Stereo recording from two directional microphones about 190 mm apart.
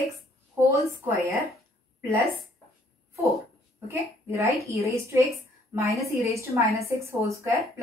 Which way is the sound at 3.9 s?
15° right (ahead or behind).